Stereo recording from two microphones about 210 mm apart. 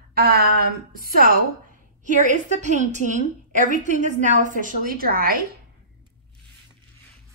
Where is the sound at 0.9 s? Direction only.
45° right (ahead or behind).